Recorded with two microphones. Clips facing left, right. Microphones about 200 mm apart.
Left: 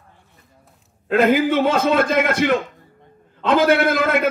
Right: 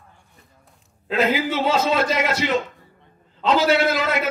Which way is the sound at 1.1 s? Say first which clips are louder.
Left 5 dB; 55° left (ahead or behind).